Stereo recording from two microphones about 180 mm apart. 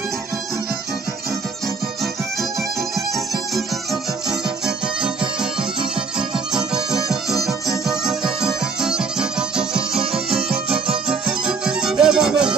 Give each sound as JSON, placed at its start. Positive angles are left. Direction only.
{"t": 4.3, "sound": "music", "side_deg": -5}
{"t": 6.1, "sound": "music", "side_deg": -5}
{"t": 10.1, "sound": "music", "side_deg": -30}
{"t": 11.6, "sound": "music", "side_deg": -5}